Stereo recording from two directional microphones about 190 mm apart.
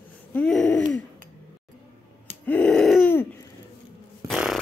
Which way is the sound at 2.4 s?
5° left (ahead or behind).